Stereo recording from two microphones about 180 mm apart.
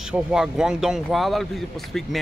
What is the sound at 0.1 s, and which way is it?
Speech, 5° right (ahead or behind).